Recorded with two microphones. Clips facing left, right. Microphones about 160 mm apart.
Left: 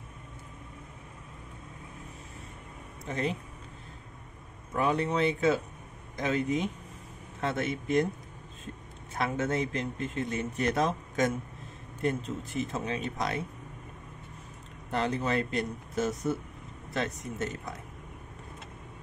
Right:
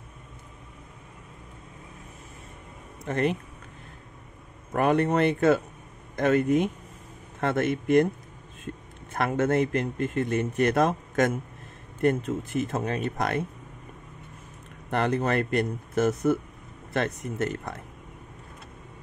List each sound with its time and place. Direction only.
3.1 s a man's voice: 60° right (ahead or behind)
4.7 s a man's voice: 60° right (ahead or behind)
9.1 s a man's voice: 55° right (ahead or behind)
14.9 s a man's voice: 60° right (ahead or behind)